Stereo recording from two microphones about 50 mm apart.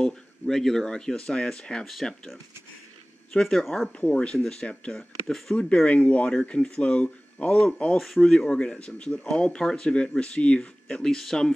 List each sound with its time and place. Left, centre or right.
0.0 s speech: centre
3.3 s speech: centre
3.9 s speech: left
4.9 s speech: centre
5.6 s speech: left
11.0 s speech: centre